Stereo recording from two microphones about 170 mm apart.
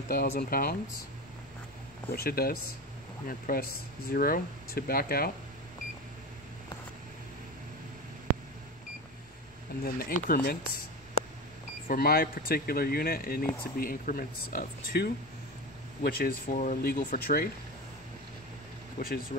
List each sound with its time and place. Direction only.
0.1 s speech: 60° left (ahead or behind)
2.1 s speech: 65° left (ahead or behind)
9.8 s speech: 60° left (ahead or behind)
11.9 s speech: 60° left (ahead or behind)
18.9 s speech: 60° left (ahead or behind)